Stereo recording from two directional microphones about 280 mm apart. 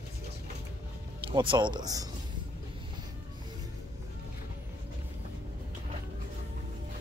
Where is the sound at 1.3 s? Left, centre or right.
Centre.